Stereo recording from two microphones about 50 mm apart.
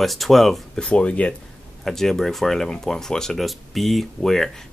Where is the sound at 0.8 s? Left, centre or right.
Left.